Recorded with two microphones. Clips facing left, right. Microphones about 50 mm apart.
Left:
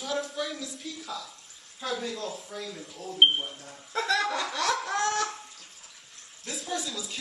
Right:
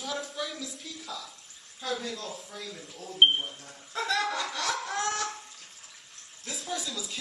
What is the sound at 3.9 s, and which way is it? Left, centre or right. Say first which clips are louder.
Chuckle: left 2 dB; left.